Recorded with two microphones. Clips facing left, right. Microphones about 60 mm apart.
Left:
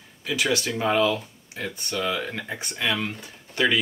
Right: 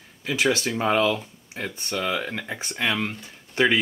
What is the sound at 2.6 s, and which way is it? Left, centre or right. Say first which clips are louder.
Speech: right 1 dB; right.